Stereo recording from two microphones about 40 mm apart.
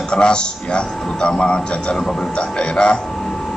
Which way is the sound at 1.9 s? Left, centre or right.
Centre.